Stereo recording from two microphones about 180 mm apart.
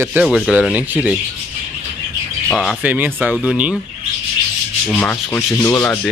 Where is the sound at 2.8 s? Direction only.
10° right (ahead or behind).